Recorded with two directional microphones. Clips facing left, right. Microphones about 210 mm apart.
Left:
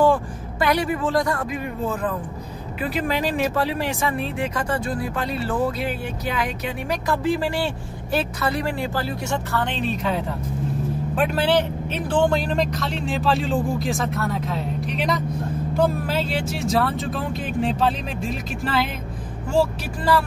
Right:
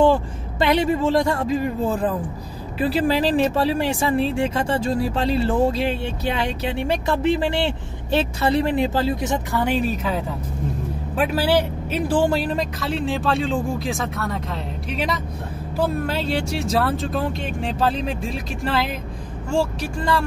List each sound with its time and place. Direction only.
0.0 s a man's voice: 25° right (ahead or behind); by 20.2 s 5° left (ahead or behind)